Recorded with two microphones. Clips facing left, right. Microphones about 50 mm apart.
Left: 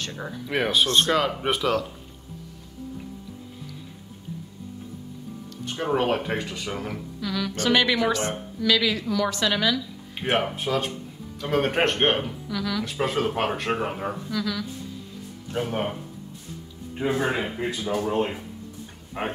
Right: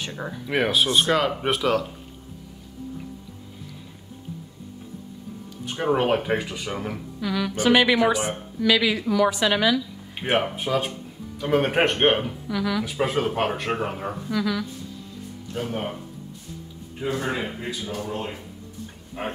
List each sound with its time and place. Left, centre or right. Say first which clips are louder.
0.0 s speech: right 1 dB; centre
5.7 s speech: right 2 dB; centre
17.0 s speech: left 2 dB; left